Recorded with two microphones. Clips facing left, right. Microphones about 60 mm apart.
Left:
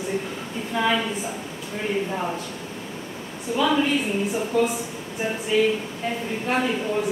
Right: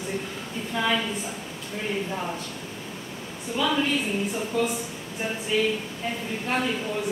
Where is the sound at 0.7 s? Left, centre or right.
Centre.